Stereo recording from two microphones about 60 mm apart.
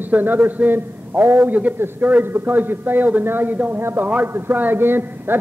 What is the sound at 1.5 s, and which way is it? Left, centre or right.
A man's voice, right.